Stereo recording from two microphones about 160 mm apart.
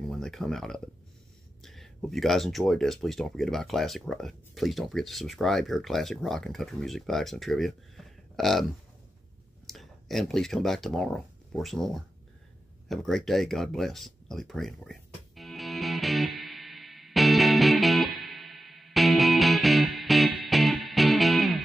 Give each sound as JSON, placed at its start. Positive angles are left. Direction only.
{"t": 0.1, "sound": "speech", "side_deg": 5}
{"t": 9.7, "sound": "speech", "side_deg": 0}
{"t": 12.8, "sound": "a sound", "side_deg": 0}